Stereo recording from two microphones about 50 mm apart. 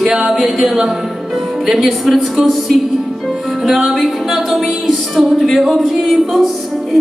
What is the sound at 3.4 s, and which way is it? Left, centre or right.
Music, centre.